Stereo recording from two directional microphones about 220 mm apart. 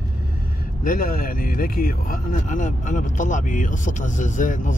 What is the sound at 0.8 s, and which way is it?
Speech, 40° left (ahead or behind).